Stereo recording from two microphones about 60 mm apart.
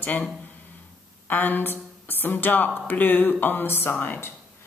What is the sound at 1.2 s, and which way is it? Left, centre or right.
A woman's voice, left.